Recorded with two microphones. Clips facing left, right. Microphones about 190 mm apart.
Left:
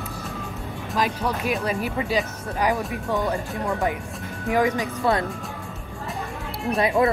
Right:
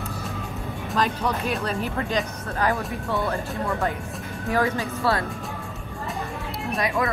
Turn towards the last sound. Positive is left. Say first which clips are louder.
# left 5 dB
turn(degrees=30)  # may be behind; listen again after turning